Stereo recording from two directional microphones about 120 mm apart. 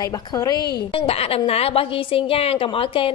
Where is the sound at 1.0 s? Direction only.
55° left (ahead or behind).